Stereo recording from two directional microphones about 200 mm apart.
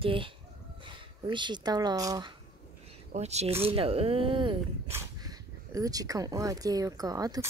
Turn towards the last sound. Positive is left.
turn(degrees=-20)  # may be behind; listen again after turning